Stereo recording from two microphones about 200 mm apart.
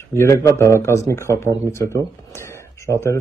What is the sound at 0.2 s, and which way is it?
A man's voice, 15° left (ahead or behind).